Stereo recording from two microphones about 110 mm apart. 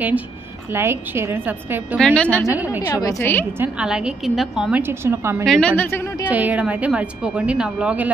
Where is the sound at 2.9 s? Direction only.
35° left (ahead or behind).